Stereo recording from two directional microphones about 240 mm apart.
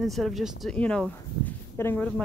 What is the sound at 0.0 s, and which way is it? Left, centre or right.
Speech, centre.